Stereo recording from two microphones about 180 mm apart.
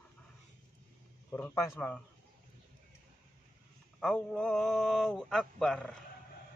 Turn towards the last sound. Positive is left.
turn(degrees=5)  # may be behind; listen again after turning